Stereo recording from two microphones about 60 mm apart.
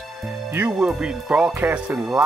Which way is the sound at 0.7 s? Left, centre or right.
Centre.